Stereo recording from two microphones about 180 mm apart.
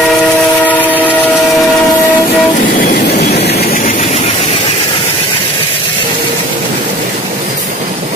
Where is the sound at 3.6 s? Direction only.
45° left (ahead or behind).